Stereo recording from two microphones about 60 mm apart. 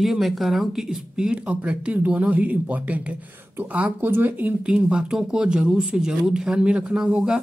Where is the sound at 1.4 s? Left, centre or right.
Right.